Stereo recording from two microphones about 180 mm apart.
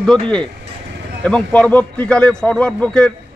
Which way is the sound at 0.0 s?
5° left (ahead or behind).